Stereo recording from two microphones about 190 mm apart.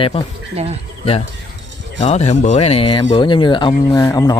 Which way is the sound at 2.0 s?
35° left (ahead or behind).